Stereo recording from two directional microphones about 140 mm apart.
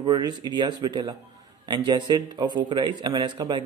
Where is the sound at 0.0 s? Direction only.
30° right (ahead or behind).